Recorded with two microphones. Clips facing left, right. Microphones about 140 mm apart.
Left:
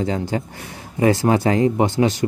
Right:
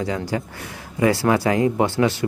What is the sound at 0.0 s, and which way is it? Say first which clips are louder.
Speech: left 2 dB; 25° left (ahead or behind).